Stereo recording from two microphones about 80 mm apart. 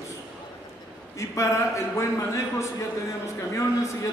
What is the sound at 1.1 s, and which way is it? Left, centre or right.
Speech, left.